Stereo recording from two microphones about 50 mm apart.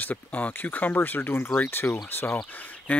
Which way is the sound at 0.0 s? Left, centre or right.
Left.